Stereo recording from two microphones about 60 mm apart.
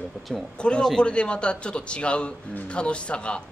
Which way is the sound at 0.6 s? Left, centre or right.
Centre.